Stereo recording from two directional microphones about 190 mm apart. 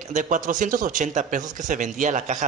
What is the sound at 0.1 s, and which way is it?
Speech, 40° right (ahead or behind).